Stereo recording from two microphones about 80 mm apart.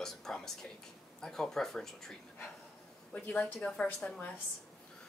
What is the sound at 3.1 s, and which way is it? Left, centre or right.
Speech, centre.